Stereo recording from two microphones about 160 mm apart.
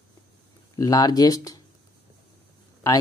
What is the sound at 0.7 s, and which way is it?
Speech, 20° left (ahead or behind).